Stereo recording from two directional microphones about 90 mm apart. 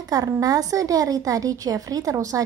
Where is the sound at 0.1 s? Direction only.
45° right (ahead or behind).